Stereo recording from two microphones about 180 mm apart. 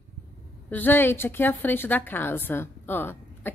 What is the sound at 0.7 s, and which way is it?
A woman's voice, 10° left (ahead or behind).